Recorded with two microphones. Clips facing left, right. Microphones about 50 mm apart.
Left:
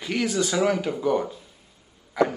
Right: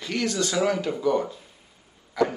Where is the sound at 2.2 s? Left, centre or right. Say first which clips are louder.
Left 1 dB; centre.